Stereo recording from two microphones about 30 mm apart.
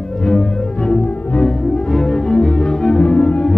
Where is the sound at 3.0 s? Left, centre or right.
Left.